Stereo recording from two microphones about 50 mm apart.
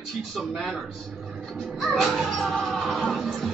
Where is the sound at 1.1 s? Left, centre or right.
Centre.